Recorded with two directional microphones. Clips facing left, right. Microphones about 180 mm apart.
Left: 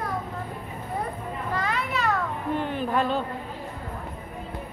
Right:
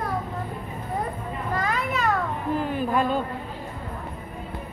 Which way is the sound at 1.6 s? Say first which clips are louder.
Right 2 dB; 45° right (ahead or behind).